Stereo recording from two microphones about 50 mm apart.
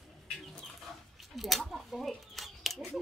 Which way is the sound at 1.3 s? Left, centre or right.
Centre.